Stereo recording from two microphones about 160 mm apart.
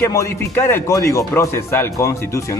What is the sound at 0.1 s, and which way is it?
Speech, 15° left (ahead or behind).